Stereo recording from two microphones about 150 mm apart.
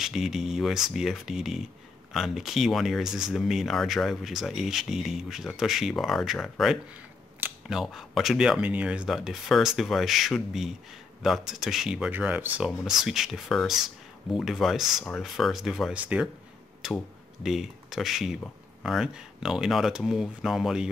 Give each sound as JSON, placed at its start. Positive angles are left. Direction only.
{"t": 0.0, "sound": "speech", "side_deg": 0}